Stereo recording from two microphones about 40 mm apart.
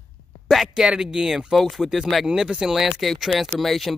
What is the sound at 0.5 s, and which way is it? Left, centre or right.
Speech, centre.